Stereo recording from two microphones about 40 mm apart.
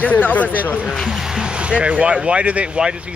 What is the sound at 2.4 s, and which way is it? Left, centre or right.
Speech, right.